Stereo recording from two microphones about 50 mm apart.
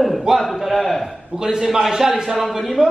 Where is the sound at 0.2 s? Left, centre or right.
Centre.